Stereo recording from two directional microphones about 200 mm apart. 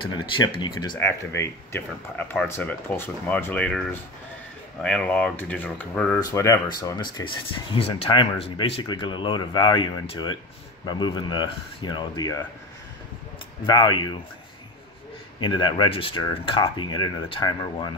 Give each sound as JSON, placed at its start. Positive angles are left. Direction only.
{"t": 0.6, "sound": "speech", "side_deg": 20}
{"t": 13.7, "sound": "speech", "side_deg": 20}
{"t": 15.4, "sound": "speech", "side_deg": 20}